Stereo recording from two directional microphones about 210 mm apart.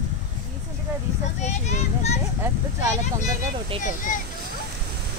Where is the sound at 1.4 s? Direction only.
35° left (ahead or behind).